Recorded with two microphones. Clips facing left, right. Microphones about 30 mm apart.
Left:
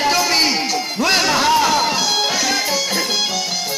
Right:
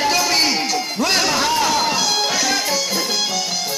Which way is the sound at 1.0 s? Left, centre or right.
Centre.